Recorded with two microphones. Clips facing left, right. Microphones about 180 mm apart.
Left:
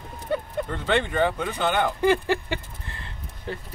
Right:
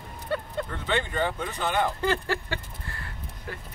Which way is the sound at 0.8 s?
75° left (ahead or behind).